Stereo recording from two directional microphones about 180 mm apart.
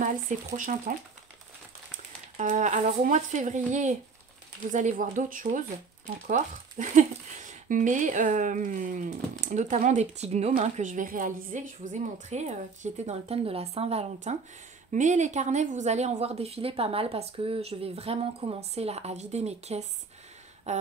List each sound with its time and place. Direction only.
0.6 s speech: 45° right (ahead or behind)
2.3 s a woman's voice: 45° right (ahead or behind)